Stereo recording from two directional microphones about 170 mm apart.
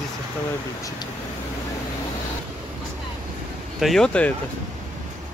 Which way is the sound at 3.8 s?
Centre (ahead or behind).